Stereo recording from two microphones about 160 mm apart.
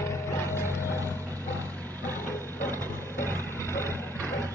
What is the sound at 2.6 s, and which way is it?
Vehicle, 15° left (ahead or behind).